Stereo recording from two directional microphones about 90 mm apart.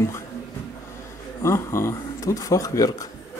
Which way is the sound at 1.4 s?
30° left (ahead or behind).